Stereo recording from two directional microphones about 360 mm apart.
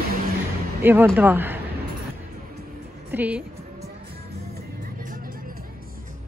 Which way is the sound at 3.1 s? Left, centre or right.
Centre.